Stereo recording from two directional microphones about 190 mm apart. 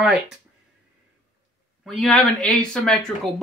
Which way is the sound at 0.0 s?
Centre (ahead or behind).